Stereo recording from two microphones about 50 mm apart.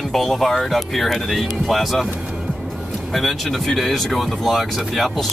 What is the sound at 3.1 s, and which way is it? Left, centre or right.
Speech, centre.